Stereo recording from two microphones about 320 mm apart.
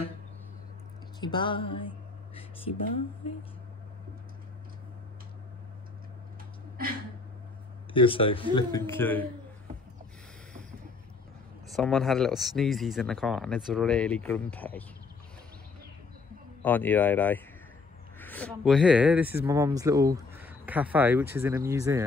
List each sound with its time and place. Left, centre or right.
1.2 s a sound: centre
7.9 s a man's voice: centre
11.7 s speech: centre
16.6 s speech: centre